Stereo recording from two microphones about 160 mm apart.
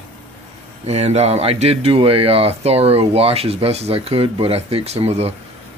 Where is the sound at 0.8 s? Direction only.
45° right (ahead or behind).